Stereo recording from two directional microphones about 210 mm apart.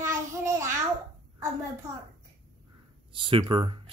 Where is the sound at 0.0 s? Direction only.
15° right (ahead or behind).